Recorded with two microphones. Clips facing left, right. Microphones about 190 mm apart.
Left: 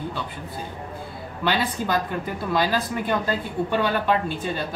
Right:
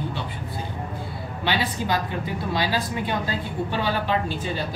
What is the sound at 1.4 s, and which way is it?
A woman's voice, 50° left (ahead or behind).